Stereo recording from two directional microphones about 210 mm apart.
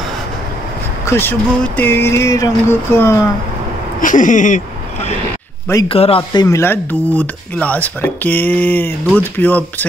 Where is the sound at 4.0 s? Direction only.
40° left (ahead or behind).